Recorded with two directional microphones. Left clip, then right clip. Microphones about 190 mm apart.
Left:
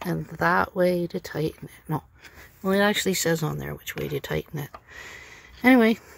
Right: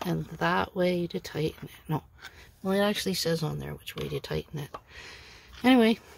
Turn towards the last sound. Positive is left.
turn(degrees=10)  # may be behind; listen again after turning